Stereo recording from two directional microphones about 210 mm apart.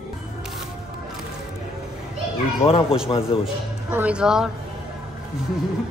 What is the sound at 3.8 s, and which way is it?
Speech, 10° right (ahead or behind).